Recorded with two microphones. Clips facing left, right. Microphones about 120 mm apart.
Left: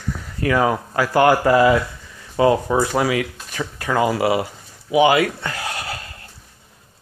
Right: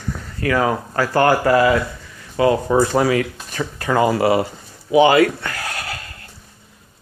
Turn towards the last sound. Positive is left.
turn(degrees=25)  # may be behind; listen again after turning